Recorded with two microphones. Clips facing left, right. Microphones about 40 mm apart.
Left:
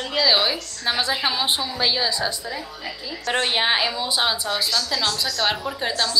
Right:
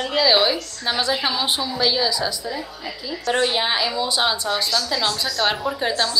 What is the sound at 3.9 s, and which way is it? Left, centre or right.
A woman's voice, centre.